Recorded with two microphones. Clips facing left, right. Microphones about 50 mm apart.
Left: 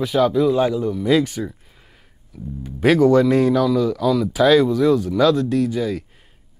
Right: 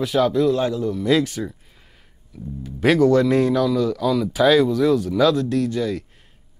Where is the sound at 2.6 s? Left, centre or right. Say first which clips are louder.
Left 1 dB; centre.